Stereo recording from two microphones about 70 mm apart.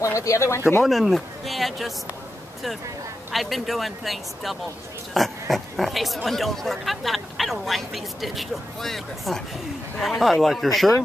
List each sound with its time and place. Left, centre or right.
0.0 s speech: left
0.8 s speech: centre
3.3 s speech: centre